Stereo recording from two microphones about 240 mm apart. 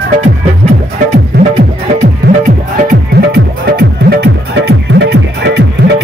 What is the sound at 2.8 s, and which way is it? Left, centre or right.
Music, right.